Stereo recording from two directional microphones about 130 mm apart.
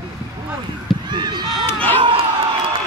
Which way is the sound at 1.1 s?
35° right (ahead or behind).